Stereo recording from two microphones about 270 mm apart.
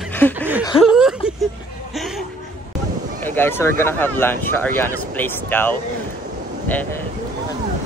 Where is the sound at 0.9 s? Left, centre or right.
Centre.